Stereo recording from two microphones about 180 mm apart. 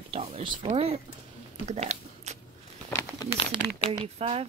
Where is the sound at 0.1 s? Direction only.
30° right (ahead or behind).